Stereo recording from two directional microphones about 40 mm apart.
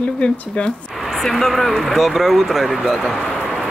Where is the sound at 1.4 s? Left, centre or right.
Centre.